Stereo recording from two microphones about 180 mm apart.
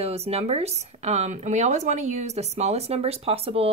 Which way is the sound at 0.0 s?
35° right (ahead or behind).